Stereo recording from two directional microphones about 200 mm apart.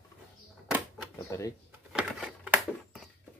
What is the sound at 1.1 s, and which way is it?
Drawer open or close, 15° left (ahead or behind).